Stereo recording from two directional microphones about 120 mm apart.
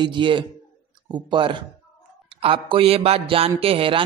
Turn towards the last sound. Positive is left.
turn(degrees=-50)  # may be behind; listen again after turning